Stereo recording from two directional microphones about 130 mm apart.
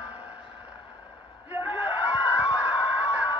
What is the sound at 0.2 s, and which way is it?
Music, 10° right (ahead or behind).